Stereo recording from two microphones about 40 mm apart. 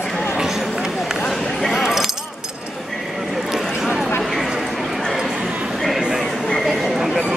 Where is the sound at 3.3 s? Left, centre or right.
Centre.